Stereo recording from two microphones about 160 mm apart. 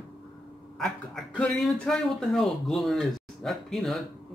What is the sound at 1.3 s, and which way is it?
Speech, 5° left (ahead or behind).